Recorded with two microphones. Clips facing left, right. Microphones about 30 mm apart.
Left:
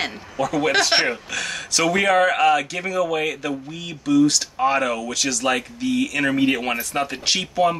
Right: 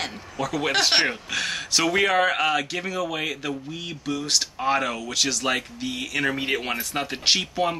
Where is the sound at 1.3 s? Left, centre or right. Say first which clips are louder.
Even; centre.